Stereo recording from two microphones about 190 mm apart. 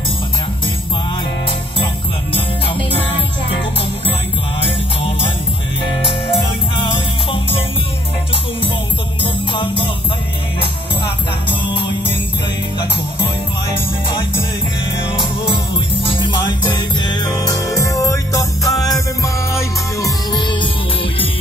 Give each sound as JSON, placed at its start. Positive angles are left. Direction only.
{"t": 9.5, "sound": "music", "side_deg": 25}
{"t": 11.6, "sound": "music", "side_deg": 25}
{"t": 15.1, "sound": "music", "side_deg": 25}